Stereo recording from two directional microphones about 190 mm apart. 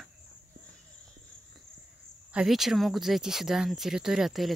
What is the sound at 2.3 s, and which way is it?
Speech, centre (ahead or behind).